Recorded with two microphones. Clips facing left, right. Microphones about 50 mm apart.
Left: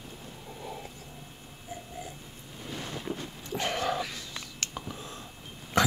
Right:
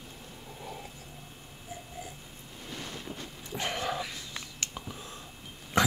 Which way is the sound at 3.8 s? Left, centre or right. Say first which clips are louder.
Left 3 dB; right.